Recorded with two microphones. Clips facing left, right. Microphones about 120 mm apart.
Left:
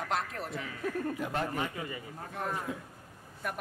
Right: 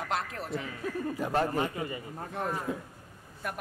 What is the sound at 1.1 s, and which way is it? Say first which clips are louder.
Speech: right 5 dB; 35° right (ahead or behind).